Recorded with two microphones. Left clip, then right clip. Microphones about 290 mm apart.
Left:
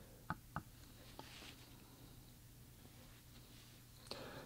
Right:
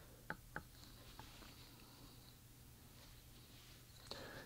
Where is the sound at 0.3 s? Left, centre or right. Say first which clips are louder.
Left 2 dB; right.